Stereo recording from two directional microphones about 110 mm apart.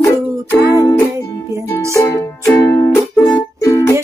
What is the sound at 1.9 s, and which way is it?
Music, 25° left (ahead or behind).